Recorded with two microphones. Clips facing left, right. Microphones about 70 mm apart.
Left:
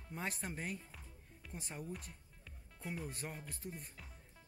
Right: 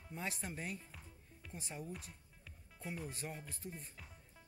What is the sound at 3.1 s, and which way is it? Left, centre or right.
Speech, left.